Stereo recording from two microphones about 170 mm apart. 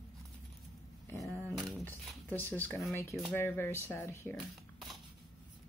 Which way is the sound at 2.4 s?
10° left (ahead or behind).